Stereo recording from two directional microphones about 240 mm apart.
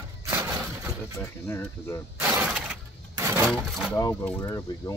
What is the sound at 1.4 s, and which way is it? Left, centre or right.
Speech, centre.